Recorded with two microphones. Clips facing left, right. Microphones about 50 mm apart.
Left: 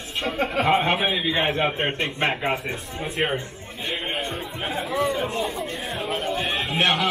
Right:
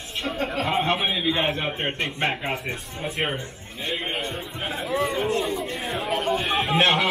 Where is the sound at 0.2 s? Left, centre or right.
Left.